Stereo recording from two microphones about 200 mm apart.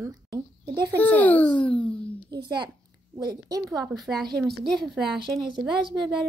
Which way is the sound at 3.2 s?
20° right (ahead or behind).